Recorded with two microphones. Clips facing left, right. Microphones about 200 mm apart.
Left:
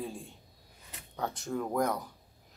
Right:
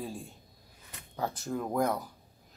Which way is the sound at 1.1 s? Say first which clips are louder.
Right 1 dB; 5° right (ahead or behind).